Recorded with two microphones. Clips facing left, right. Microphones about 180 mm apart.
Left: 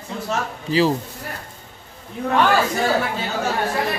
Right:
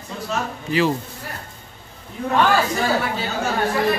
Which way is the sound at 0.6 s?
30° left (ahead or behind).